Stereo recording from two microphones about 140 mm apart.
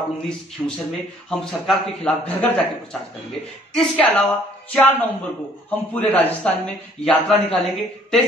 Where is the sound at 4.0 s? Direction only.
10° left (ahead or behind).